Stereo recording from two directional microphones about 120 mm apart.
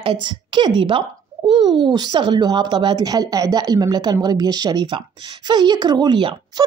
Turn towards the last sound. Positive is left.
turn(degrees=-40)  # may be behind; listen again after turning